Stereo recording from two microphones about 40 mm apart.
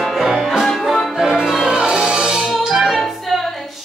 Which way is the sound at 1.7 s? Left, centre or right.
Right.